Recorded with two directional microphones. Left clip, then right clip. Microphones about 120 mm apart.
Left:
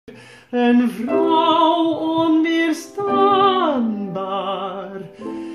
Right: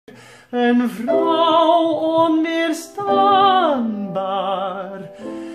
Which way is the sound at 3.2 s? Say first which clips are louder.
Right 2 dB; 10° right (ahead or behind).